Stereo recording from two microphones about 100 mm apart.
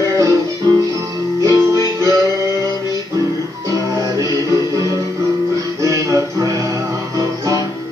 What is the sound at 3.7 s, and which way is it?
Music, 35° right (ahead or behind).